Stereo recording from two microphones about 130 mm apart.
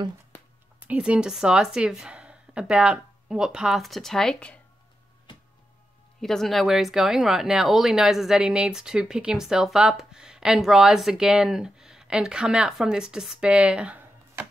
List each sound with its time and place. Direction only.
0.8 s speech: 10° right (ahead or behind); by 4.6 s 5° left (ahead or behind)
6.2 s speech: centre (ahead or behind)